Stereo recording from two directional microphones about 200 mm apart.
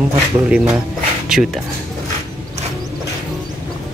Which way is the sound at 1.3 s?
Centre (ahead or behind).